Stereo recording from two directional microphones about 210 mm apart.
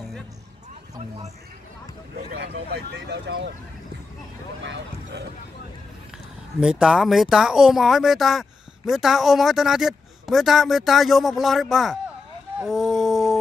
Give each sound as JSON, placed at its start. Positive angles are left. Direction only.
{"t": 2.3, "sound": "speech", "side_deg": -50}
{"t": 4.6, "sound": "speech", "side_deg": -55}
{"t": 6.6, "sound": "speech", "side_deg": -5}